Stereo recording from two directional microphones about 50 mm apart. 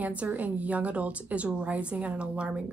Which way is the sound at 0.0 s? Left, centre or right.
Right.